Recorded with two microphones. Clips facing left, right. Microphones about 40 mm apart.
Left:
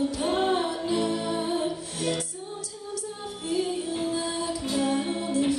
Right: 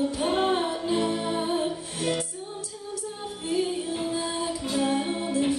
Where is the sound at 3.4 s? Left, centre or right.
Right.